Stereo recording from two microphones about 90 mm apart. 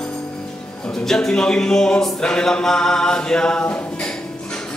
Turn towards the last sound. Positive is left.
turn(degrees=10)  # may be behind; listen again after turning